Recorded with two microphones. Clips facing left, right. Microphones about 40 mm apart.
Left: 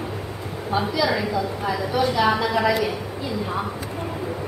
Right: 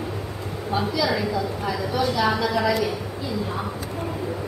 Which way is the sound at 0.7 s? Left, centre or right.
Centre.